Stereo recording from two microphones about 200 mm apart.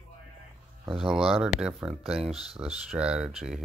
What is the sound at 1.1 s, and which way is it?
Speech, centre (ahead or behind).